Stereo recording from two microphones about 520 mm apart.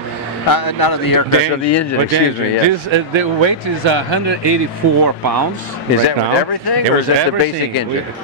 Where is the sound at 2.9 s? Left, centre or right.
Right.